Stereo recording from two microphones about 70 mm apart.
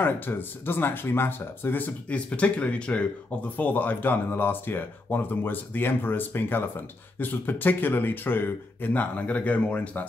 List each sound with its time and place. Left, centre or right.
0.0 s speech: left